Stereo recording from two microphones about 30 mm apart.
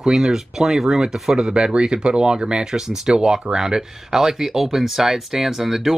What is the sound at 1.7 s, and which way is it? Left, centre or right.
Speech, right.